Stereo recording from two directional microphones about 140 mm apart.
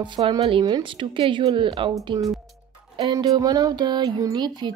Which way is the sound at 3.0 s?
30° right (ahead or behind).